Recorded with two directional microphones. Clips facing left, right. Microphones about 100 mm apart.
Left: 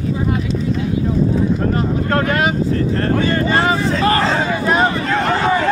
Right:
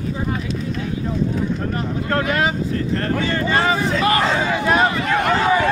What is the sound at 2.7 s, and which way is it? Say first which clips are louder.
Speech: left 4 dB; 35° left (ahead or behind).